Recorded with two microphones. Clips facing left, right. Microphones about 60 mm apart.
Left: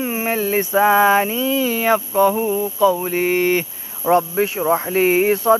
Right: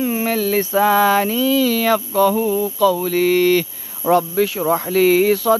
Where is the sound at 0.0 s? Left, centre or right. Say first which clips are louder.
Right 2 dB; left.